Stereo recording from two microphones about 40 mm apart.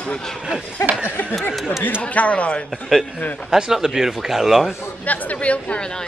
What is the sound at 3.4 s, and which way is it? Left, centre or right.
A man's voice, centre.